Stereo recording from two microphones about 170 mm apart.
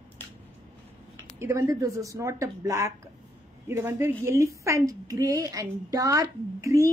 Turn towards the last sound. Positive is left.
turn(degrees=-20)  # may be behind; listen again after turning